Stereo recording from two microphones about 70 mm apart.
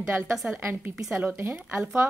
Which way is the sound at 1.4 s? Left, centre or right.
Right.